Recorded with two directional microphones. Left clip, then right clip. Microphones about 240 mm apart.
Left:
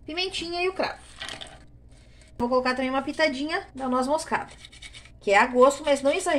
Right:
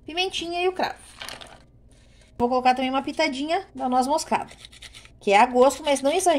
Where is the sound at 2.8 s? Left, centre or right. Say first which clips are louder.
Right 1 dB; right.